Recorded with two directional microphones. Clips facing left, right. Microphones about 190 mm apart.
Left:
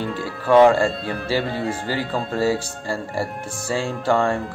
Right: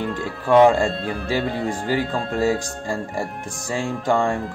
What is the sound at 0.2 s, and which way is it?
Speech, 15° right (ahead or behind).